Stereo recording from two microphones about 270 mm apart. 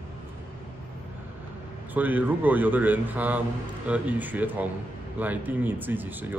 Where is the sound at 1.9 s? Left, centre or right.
Centre.